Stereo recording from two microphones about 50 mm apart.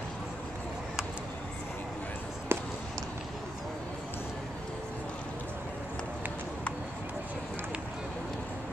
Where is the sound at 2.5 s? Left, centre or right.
Right.